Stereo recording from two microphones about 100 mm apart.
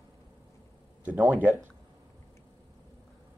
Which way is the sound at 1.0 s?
20° right (ahead or behind).